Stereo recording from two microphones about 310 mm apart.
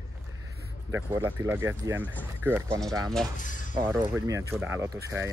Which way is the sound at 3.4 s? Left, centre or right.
Left.